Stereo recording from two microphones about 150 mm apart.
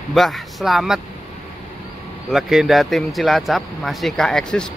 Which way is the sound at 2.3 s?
Centre (ahead or behind).